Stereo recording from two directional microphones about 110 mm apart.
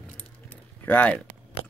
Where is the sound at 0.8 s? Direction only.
15° left (ahead or behind).